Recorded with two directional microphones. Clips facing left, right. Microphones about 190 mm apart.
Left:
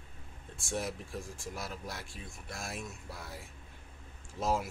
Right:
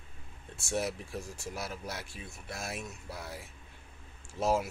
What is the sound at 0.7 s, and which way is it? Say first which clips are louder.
Speech: right 3 dB; 5° right (ahead or behind).